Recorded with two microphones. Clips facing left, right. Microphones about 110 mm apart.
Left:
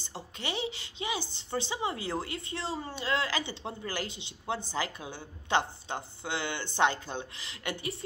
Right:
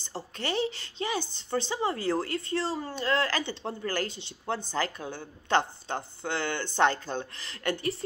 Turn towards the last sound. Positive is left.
turn(degrees=15)  # may be behind; listen again after turning